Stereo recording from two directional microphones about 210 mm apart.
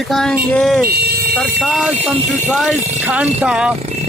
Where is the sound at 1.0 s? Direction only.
45° right (ahead or behind).